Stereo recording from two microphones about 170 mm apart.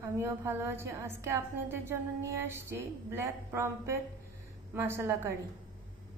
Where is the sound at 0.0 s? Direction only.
15° right (ahead or behind).